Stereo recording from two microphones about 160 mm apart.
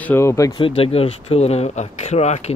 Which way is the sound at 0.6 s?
35° left (ahead or behind).